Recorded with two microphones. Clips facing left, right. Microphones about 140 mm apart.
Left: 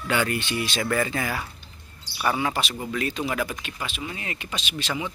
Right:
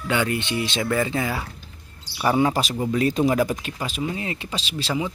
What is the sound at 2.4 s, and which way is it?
Speech, 40° right (ahead or behind).